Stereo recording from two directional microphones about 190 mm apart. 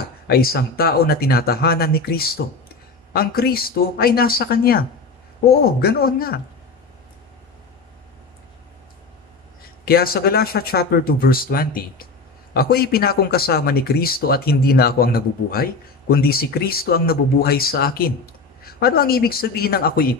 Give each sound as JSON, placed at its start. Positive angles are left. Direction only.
{"t": 0.3, "sound": "speech", "side_deg": 55}
{"t": 9.8, "sound": "speech", "side_deg": 50}